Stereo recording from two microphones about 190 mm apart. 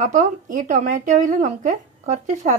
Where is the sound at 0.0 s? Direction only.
40° right (ahead or behind).